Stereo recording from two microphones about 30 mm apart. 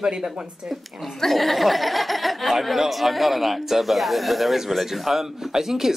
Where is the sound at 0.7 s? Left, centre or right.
Centre.